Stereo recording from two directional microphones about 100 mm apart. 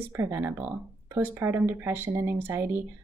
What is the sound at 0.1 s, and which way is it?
Speech, 25° right (ahead or behind).